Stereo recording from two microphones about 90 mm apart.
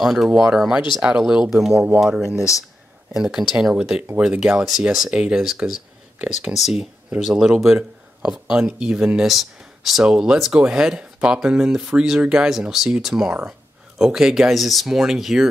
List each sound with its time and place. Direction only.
0.0 s speech: centre (ahead or behind)
2.3 s speech: 35° left (ahead or behind)
3.2 s speech: 5° right (ahead or behind)